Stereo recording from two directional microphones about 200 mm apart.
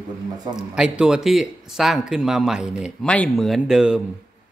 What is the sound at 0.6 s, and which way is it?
Speech, 5° right (ahead or behind).